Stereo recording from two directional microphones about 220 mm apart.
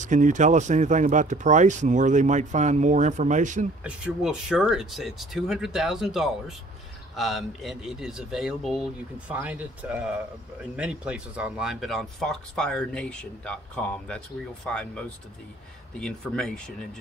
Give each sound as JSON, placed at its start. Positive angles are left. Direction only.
{"t": 0.0, "sound": "speech", "side_deg": -35}
{"t": 3.8, "sound": "speech", "side_deg": -5}